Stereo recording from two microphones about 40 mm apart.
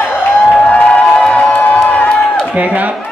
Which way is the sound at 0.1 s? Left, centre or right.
Centre.